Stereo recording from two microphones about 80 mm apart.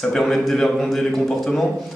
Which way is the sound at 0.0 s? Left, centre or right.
Centre.